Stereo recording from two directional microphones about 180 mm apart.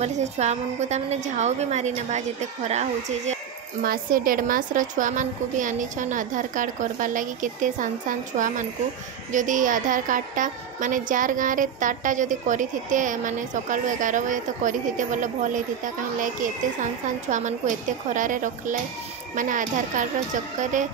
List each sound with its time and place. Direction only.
0.0 s a woman's voice: 40° right (ahead or behind)
3.8 s a woman's voice: 55° right (ahead or behind)